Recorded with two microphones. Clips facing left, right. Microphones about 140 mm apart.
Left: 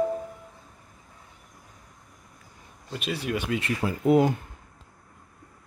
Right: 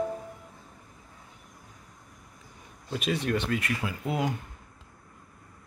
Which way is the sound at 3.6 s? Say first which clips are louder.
Left 6 dB; 35° left (ahead or behind).